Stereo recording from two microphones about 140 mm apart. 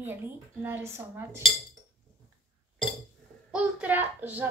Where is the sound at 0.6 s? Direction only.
15° right (ahead or behind).